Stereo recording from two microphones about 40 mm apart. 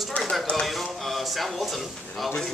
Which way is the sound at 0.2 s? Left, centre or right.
Left.